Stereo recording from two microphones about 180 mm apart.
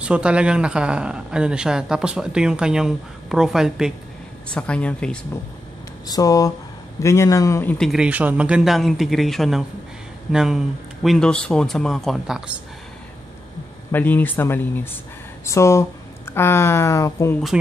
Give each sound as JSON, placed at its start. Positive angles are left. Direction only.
{"t": 0.0, "sound": "speech", "side_deg": -5}
{"t": 6.0, "sound": "speech", "side_deg": 20}
{"t": 7.7, "sound": "speech", "side_deg": 0}
{"t": 13.9, "sound": "speech", "side_deg": 10}